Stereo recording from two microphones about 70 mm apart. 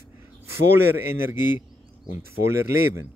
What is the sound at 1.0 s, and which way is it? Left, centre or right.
Speech, right.